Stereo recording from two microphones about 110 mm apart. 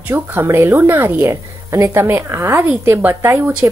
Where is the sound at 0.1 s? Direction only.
20° right (ahead or behind).